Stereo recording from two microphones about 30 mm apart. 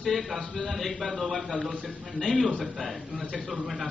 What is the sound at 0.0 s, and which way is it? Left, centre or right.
A man's voice, centre.